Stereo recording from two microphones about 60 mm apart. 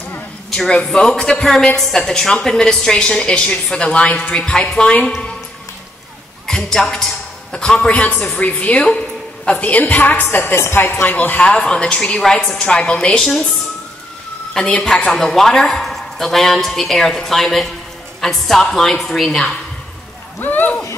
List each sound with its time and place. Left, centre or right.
0.5 s a man's voice: centre
6.4 s a man's voice: centre
12.4 s a man's voice: centre
14.5 s a man's voice: centre
20.3 s speech: left